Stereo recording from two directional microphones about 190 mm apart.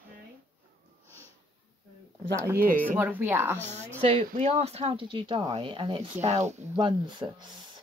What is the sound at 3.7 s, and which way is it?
Speech, 35° right (ahead or behind).